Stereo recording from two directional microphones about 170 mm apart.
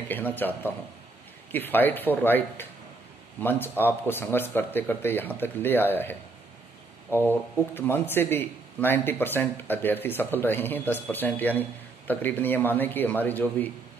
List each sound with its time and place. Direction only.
0.1 s a man's voice: 10° left (ahead or behind)
7.2 s a man's voice: 10° left (ahead or behind)